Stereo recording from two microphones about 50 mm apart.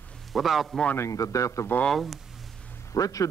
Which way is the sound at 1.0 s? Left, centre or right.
Left.